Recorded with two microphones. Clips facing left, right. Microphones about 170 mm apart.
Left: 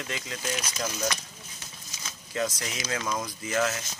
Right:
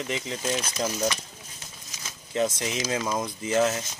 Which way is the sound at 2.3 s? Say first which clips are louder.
Right 5 dB; 25° right (ahead or behind).